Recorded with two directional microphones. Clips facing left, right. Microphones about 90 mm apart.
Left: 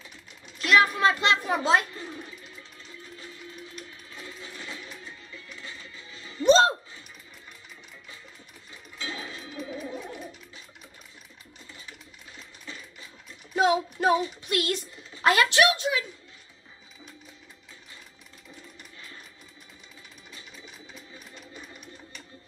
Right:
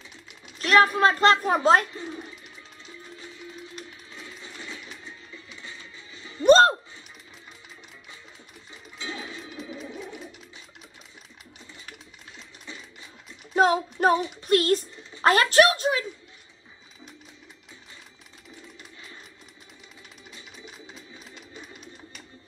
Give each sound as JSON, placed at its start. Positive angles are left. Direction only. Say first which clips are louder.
{"t": 0.6, "sound": "a child's voice", "louder": "right 3 dB", "side_deg": -40}
{"t": 4.2, "sound": "music", "louder": "left 1 dB", "side_deg": 0}
{"t": 6.4, "sound": "a sound", "louder": "right 3 dB", "side_deg": -50}
{"t": 8.9, "sound": "music", "louder": "right 1 dB", "side_deg": 0}
{"t": 13.6, "sound": "child singing", "louder": "right 2 dB", "side_deg": -45}
{"t": 15.2, "sound": "speech", "louder": "right 3 dB", "side_deg": -40}